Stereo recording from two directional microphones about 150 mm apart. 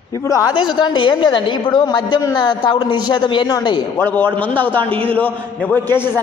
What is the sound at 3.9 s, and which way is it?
Speech, 15° left (ahead or behind).